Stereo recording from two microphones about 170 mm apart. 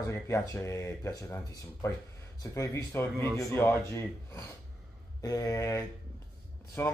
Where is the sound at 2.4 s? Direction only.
20° left (ahead or behind).